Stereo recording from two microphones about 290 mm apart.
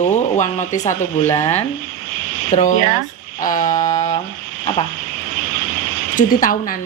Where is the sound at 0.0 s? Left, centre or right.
Left.